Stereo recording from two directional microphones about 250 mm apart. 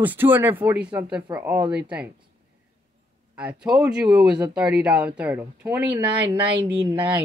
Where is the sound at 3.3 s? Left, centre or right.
Centre.